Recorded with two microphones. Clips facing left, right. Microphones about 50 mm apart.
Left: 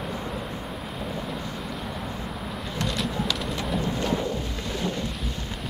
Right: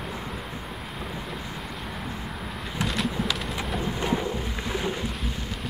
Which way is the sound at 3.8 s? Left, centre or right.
Centre.